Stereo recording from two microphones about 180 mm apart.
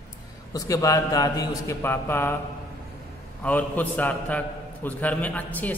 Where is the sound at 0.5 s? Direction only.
20° left (ahead or behind).